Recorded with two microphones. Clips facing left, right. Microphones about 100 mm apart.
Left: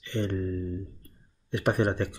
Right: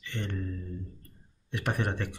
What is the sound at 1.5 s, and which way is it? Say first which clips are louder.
Speech: left 6 dB; 15° left (ahead or behind).